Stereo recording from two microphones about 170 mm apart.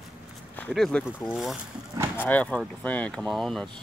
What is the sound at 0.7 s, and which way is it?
Speech, centre (ahead or behind).